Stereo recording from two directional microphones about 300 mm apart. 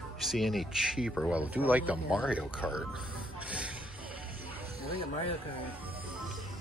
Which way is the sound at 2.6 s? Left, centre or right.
Centre.